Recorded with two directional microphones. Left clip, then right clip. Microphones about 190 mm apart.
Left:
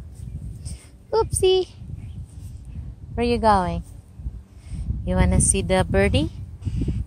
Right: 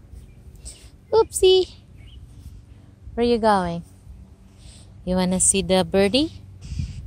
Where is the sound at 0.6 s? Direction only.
50° right (ahead or behind).